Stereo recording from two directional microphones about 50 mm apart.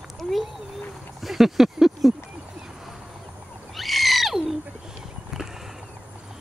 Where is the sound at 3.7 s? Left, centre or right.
Centre.